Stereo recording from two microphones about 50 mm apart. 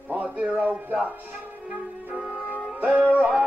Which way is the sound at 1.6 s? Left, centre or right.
Right.